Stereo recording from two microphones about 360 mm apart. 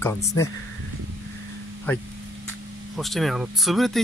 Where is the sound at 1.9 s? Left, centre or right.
Centre.